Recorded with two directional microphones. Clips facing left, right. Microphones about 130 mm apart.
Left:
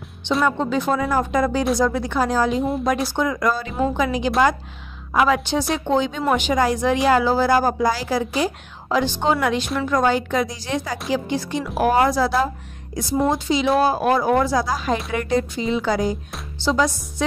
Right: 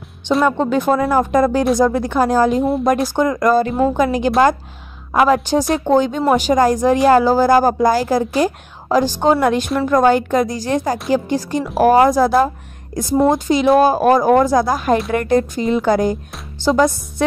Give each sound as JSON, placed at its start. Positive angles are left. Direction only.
{"t": 0.4, "sound": "speech", "side_deg": -55}